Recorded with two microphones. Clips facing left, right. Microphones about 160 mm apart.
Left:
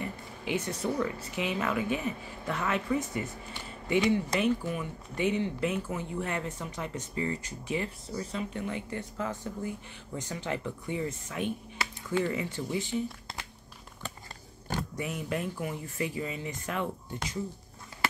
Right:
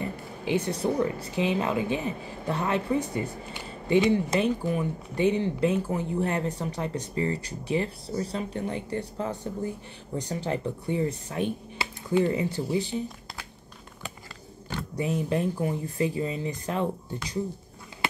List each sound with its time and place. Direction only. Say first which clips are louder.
0.0 s speech: right 4 dB; 30° right (ahead or behind)
15.0 s speech: right 9 dB; 30° right (ahead or behind)